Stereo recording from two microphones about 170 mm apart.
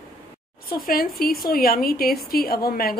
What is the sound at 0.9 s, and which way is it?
A woman's voice, 60° left (ahead or behind).